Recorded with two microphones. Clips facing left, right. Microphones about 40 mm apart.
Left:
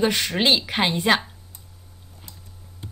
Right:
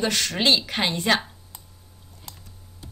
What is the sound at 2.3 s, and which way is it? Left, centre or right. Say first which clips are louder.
Typing: right 5 dB; right.